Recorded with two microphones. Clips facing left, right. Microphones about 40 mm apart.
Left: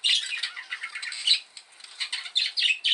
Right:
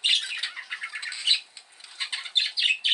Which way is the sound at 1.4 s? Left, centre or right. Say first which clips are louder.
Even; centre.